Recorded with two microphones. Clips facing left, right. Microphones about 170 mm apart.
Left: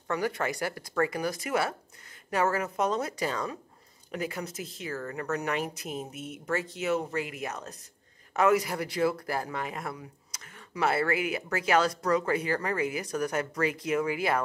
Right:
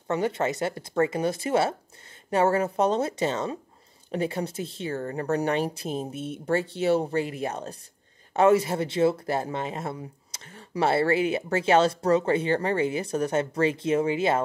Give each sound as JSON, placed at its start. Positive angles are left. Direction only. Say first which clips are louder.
{"t": 0.1, "sound": "speech", "louder": "right 4 dB", "side_deg": -25}